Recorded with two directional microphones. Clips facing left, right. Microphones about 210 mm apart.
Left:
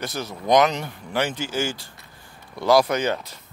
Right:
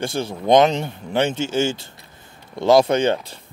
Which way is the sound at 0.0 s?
30° right (ahead or behind).